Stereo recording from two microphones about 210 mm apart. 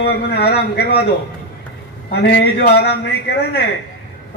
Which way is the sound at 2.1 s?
55° left (ahead or behind).